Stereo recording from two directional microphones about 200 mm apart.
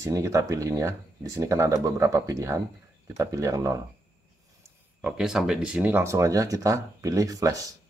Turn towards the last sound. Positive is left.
turn(degrees=-15)  # may be behind; listen again after turning